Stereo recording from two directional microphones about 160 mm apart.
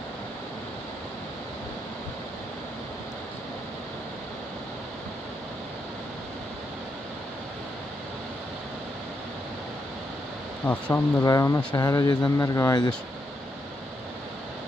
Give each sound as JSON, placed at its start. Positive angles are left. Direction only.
{"t": 10.7, "sound": "speech", "side_deg": 15}